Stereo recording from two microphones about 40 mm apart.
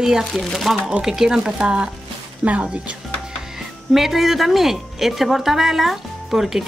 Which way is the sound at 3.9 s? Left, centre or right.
Centre.